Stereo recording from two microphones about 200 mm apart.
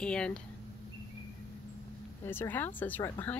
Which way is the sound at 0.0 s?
5° left (ahead or behind).